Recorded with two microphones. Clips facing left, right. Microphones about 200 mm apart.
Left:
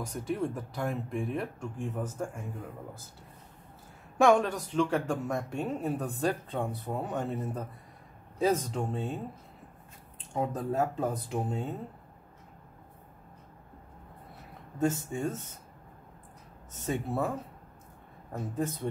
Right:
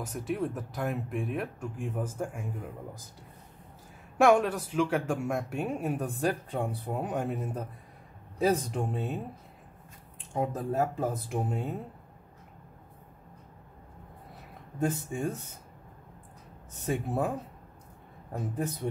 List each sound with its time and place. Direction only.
0.0 s speech: 5° right (ahead or behind)
4.2 s speech: 5° right (ahead or behind)
10.3 s speech: 10° right (ahead or behind)
14.9 s speech: 15° right (ahead or behind)
16.7 s speech: 10° right (ahead or behind)